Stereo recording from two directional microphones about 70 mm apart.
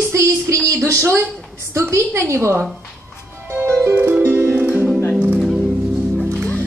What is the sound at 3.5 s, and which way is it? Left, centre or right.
Music, right.